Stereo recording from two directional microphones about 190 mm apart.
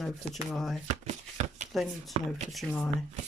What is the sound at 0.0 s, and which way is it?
Speech, centre (ahead or behind).